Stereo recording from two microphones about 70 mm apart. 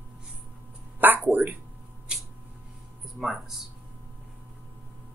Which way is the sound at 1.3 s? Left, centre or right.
Right.